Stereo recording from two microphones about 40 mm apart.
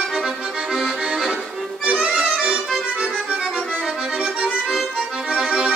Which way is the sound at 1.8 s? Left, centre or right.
Right.